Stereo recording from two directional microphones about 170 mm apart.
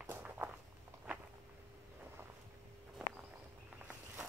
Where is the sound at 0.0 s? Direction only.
15° right (ahead or behind).